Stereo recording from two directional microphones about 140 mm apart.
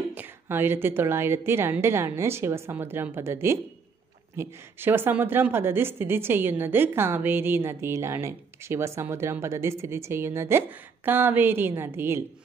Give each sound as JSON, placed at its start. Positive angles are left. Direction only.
{"t": 0.1, "sound": "a woman's voice", "side_deg": -15}